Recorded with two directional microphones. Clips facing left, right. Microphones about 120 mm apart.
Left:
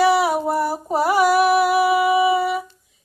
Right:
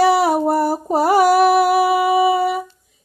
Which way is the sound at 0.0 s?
40° right (ahead or behind).